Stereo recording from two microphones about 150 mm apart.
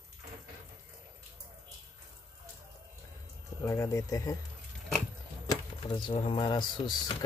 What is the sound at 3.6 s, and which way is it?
Speech, 20° left (ahead or behind).